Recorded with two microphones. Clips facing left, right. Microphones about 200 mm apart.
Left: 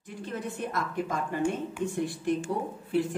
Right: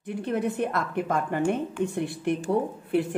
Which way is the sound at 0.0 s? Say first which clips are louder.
Right 8 dB; 60° right (ahead or behind).